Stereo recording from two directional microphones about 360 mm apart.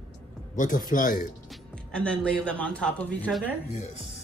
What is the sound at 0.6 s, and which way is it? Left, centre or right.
Speech, left.